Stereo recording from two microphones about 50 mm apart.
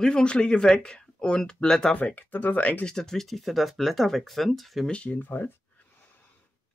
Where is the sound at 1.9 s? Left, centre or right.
Left.